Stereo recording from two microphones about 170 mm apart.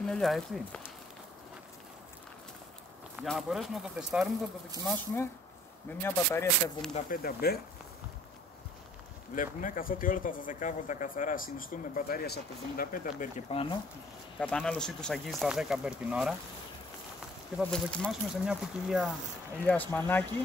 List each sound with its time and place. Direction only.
0.0 s speech: 5° left (ahead or behind)
3.2 s speech: centre (ahead or behind)
4.8 s speech: 15° left (ahead or behind)
6.9 s speech: 40° left (ahead or behind)
7.2 s speech: 65° left (ahead or behind)
9.3 s speech: 50° left (ahead or behind)
13.5 s speech: 35° left (ahead or behind)
14.4 s speech: 5° left (ahead or behind)
17.6 s speech: 5° left (ahead or behind)
19.6 s speech: 10° left (ahead or behind)